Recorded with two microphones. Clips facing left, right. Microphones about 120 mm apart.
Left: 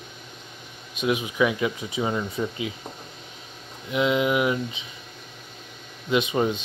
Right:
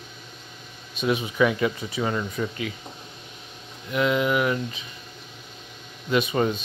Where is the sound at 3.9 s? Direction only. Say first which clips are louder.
Even; 15° left (ahead or behind).